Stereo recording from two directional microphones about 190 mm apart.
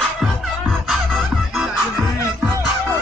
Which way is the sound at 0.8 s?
Centre (ahead or behind).